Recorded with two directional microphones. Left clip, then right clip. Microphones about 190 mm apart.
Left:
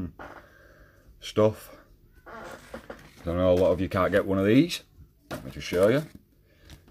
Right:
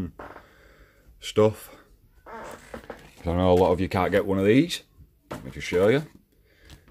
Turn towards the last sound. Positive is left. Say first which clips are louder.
# right 1 dB
turn(degrees=-15)  # may be behind; listen again after turning